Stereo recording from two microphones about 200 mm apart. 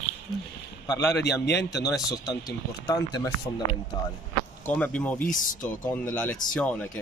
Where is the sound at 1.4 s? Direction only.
55° left (ahead or behind).